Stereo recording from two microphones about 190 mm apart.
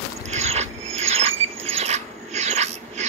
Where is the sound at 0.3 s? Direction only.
35° right (ahead or behind).